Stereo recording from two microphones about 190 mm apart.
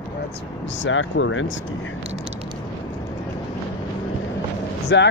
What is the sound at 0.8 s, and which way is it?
Speech, 75° left (ahead or behind).